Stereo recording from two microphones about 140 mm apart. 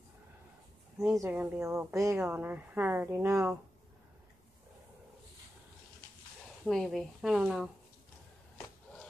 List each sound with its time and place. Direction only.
1.1 s speech: 20° right (ahead or behind)
6.6 s speech: centre (ahead or behind)